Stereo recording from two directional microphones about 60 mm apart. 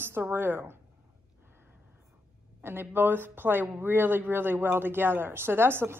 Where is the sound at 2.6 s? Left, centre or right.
Right.